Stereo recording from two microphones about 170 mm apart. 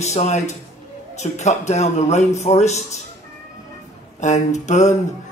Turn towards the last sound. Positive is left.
turn(degrees=45)  # may be behind; listen again after turning